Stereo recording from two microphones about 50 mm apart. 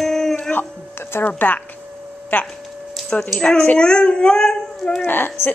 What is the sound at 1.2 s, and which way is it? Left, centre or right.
Speech, left.